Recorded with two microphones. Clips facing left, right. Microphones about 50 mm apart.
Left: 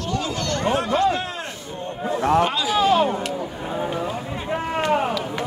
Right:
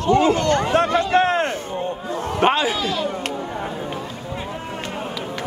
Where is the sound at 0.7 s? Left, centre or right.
Right.